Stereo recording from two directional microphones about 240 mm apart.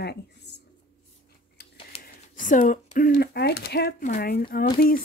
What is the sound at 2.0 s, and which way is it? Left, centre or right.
Speech, left.